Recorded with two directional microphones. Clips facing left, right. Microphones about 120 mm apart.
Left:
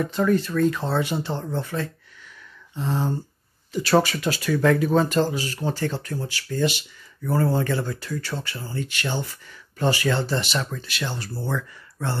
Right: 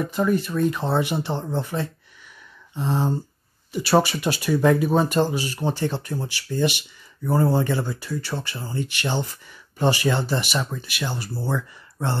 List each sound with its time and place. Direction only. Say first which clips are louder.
0.0 s speech: left 1 dB; 10° right (ahead or behind)